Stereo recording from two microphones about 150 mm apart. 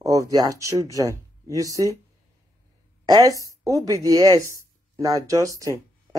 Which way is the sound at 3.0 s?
25° right (ahead or behind).